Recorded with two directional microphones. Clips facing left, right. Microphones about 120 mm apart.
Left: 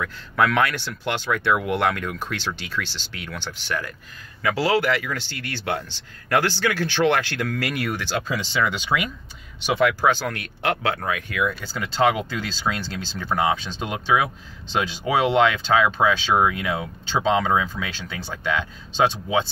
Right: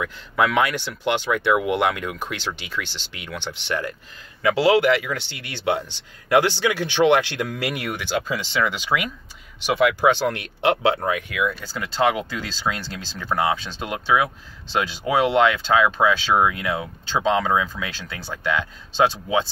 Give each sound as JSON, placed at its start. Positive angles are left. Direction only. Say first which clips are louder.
{"t": 0.0, "sound": "speech", "louder": "even", "side_deg": -15}
{"t": 9.9, "sound": "speech", "louder": "right 3 dB", "side_deg": -25}
{"t": 11.3, "sound": "speech", "louder": "even", "side_deg": -5}